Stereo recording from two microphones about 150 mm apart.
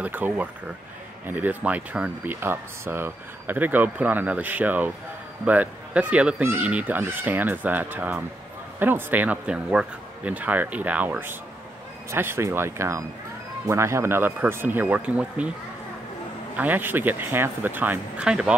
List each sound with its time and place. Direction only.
0.0 s speech: 10° right (ahead or behind)
16.5 s speech: 10° right (ahead or behind)